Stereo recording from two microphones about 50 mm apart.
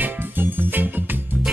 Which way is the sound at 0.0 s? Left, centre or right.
Right.